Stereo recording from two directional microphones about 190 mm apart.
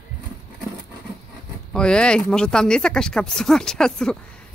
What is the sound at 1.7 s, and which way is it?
Speech, 5° left (ahead or behind).